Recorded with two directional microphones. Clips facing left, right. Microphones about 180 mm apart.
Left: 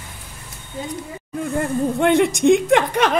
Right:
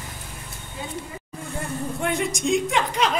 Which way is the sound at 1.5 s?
70° left (ahead or behind).